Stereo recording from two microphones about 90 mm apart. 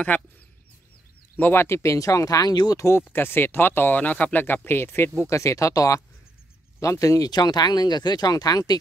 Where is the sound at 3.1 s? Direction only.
25° left (ahead or behind).